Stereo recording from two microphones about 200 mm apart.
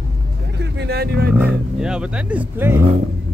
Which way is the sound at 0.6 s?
55° right (ahead or behind).